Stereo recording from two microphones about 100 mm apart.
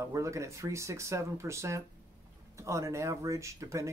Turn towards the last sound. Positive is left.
turn(degrees=-30)  # may be behind; listen again after turning